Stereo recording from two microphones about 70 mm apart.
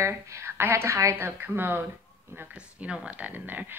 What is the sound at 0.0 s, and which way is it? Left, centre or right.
A woman's voice, right.